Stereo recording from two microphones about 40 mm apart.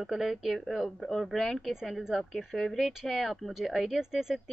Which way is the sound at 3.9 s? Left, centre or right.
Centre.